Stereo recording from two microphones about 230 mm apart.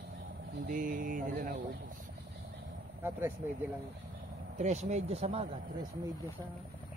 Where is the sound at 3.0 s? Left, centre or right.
Centre.